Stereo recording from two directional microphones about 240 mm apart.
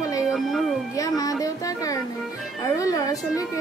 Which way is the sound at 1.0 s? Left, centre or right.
Centre.